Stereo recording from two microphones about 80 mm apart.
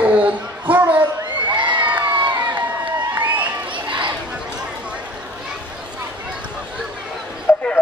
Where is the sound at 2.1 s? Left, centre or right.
Right.